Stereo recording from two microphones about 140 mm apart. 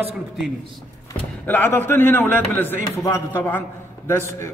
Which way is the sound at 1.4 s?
15° left (ahead or behind).